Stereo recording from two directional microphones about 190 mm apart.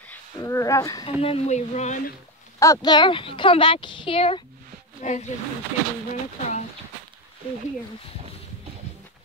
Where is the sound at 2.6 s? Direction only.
20° left (ahead or behind); by 5.3 s 35° left (ahead or behind).